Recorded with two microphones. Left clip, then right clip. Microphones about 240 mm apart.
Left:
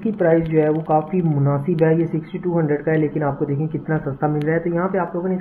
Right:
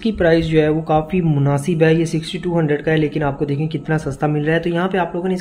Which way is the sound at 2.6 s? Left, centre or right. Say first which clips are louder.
Right 2 dB; right.